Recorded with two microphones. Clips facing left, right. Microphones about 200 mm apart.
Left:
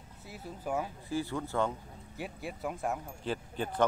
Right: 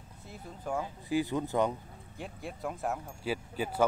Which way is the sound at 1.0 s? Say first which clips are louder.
Right 4 dB; 15° right (ahead or behind).